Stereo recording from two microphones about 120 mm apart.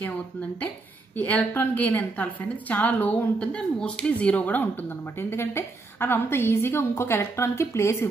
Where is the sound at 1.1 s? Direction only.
15° left (ahead or behind).